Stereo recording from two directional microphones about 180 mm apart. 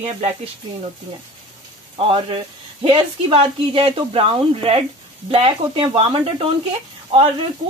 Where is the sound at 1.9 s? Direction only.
30° right (ahead or behind).